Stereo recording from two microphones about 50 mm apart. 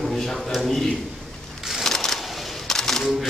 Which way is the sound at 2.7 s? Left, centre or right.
Centre.